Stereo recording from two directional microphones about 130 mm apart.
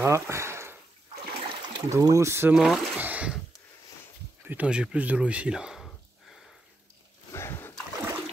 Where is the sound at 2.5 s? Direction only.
Centre (ahead or behind).